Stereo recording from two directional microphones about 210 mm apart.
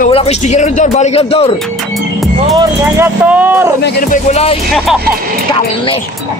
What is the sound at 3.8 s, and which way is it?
Music, 40° left (ahead or behind).